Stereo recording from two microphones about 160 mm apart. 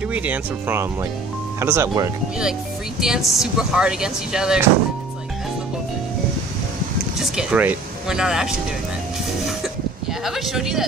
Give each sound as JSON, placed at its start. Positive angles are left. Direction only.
{"t": 0.1, "sound": "speech", "side_deg": -10}
{"t": 3.0, "sound": "speech", "side_deg": 0}
{"t": 7.2, "sound": "speech", "side_deg": -5}
{"t": 10.2, "sound": "speech", "side_deg": 0}